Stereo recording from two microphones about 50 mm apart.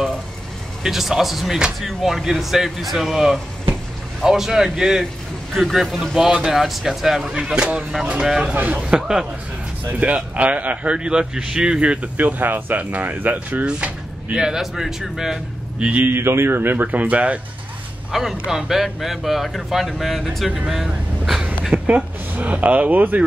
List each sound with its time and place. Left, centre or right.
0.8 s speech: centre
7.4 s speech: centre
8.2 s speech: centre
8.5 s speech: right
8.8 s speech: centre
9.8 s a man's voice: right
12.2 s speech: right
13.7 s sliding door: right
14.4 s speech: centre
15.8 s a man's voice: right
16.1 s speech: right
18.1 s speech: centre
21.7 s speech: right